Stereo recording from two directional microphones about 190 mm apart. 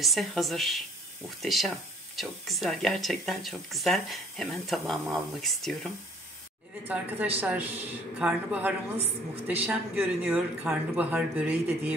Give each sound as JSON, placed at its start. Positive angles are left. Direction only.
{"t": 0.0, "sound": "speech", "side_deg": 0}
{"t": 7.3, "sound": "speech", "side_deg": -10}
{"t": 8.9, "sound": "a woman's voice", "side_deg": -30}
{"t": 9.7, "sound": "speech", "side_deg": -5}